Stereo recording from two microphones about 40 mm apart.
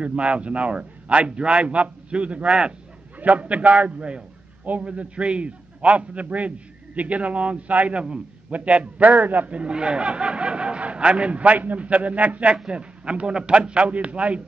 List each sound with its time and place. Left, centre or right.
0.0 s a man's voice: right
9.5 s a man's voice: right